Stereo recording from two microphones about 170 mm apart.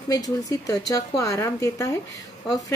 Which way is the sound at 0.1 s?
20° left (ahead or behind).